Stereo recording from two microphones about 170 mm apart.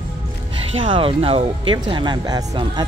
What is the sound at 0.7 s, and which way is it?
Speech, 30° right (ahead or behind).